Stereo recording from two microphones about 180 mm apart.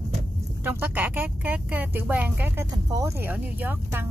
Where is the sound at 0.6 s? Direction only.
10° right (ahead or behind).